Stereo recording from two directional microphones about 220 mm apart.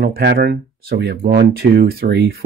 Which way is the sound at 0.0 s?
50° right (ahead or behind).